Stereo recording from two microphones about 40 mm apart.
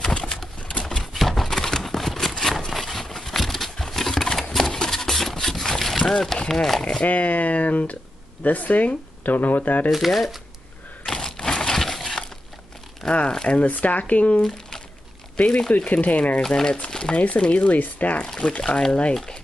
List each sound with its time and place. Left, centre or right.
0.0 s a sound: centre
0.6 s a sound: left
1.1 s a sound: centre
7.0 s speech: left
9.8 s speech: centre
11.1 s a sound: centre
13.0 s speech: centre
13.5 s speech: left
13.7 s speech: left
15.3 s speech: left
16.3 s speech: centre
16.9 s speech: left
17.6 s speech: left
18.2 s speech: centre